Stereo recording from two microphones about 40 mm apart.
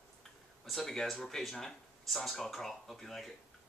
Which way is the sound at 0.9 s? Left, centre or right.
Centre.